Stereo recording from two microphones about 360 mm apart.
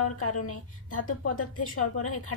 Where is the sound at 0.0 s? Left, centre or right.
Left.